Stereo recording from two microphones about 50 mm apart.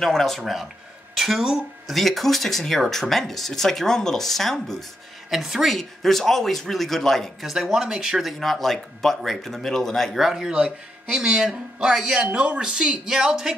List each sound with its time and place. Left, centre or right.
0.0 s speech: centre
1.1 s a sound: centre
2.0 s speech: centre
5.3 s speech: centre
5.8 s speech: centre
7.4 s speech: centre
10.2 s speech: centre